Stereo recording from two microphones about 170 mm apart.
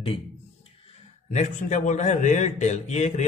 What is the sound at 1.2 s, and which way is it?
A man's voice, 45° left (ahead or behind).